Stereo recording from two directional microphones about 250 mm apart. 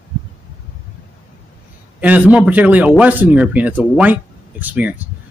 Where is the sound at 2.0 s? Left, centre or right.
Centre.